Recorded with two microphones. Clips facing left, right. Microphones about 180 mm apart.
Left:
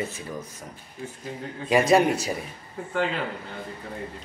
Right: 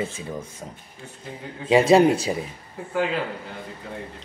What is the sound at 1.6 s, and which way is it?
Speech, 25° right (ahead or behind).